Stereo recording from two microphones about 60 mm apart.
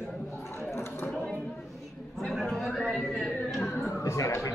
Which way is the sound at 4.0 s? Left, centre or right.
Left.